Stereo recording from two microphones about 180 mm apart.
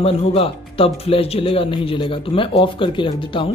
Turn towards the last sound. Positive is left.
turn(degrees=30)  # may be behind; listen again after turning